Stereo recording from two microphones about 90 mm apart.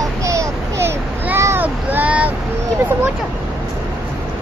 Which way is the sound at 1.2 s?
25° right (ahead or behind).